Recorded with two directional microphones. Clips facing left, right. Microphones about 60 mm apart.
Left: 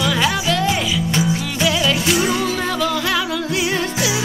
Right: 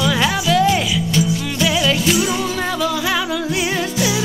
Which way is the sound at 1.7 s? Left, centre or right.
Centre.